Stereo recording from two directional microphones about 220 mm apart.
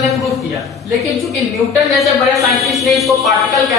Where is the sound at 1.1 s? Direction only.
Centre (ahead or behind).